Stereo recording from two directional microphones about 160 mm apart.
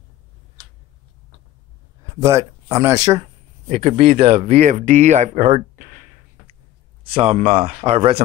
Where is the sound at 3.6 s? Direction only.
40° right (ahead or behind).